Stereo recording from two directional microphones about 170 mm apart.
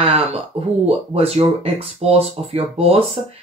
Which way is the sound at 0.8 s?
35° right (ahead or behind).